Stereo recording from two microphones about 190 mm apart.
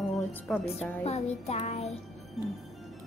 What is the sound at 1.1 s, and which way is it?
Child singing, 35° left (ahead or behind).